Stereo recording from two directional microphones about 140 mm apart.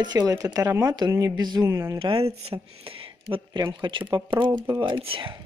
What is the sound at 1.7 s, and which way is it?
Speech, 20° right (ahead or behind).